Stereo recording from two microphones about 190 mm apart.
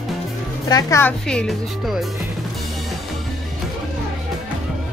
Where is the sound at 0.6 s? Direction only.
15° left (ahead or behind).